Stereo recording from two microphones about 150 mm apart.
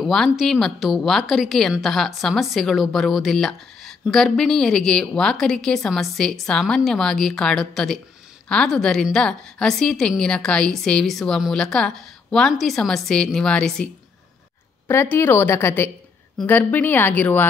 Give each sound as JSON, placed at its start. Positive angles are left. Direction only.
{"t": 0.0, "sound": "a woman's voice", "side_deg": 0}
{"t": 14.9, "sound": "a woman's voice", "side_deg": 15}